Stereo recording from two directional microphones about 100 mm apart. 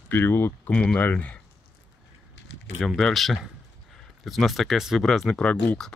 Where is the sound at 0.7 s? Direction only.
10° left (ahead or behind).